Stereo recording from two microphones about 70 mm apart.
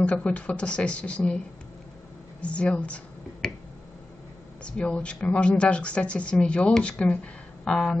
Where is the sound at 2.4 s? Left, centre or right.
Centre.